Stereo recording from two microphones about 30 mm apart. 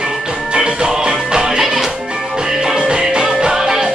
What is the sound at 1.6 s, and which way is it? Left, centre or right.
Music, centre.